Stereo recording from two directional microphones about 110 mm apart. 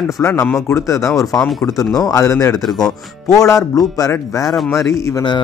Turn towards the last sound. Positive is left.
turn(degrees=25)  # may be behind; listen again after turning